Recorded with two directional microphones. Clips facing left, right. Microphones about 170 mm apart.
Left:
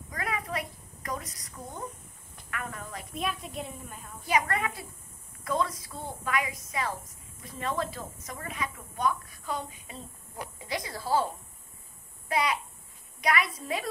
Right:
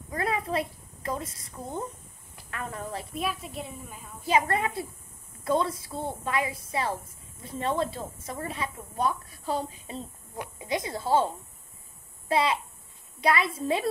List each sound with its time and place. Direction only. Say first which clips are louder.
0.1 s a sound: right 5 dB; 30° right (ahead or behind)
2.5 s a woman's voice: right 4 dB; 30° right (ahead or behind)
3.1 s a woman's voice: left 2 dB; centre (ahead or behind)
4.3 s a woman's voice: right 3 dB; 25° right (ahead or behind)